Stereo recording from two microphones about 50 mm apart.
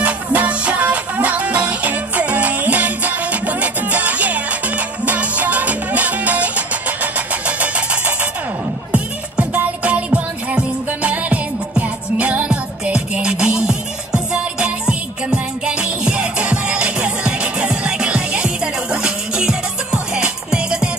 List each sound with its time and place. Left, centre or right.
0.0 s music: right